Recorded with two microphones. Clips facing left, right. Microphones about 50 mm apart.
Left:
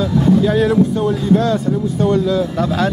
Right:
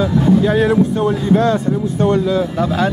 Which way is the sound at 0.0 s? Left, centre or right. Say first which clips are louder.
Even; centre.